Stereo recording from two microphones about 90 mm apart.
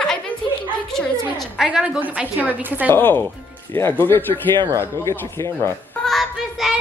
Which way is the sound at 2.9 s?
20° left (ahead or behind).